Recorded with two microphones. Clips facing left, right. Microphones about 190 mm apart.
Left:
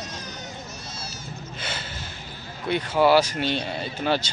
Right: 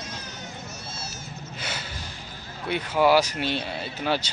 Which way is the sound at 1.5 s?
10° right (ahead or behind).